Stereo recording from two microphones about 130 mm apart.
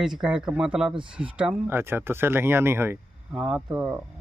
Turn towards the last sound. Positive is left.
turn(degrees=-5)  # may be behind; listen again after turning